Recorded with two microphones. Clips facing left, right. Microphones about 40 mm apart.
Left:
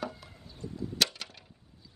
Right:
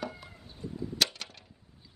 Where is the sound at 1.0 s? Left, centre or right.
Centre.